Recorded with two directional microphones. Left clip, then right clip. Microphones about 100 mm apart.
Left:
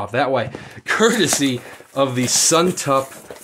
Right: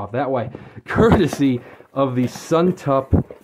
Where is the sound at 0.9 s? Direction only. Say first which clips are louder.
Right 1 dB; 40° right (ahead or behind).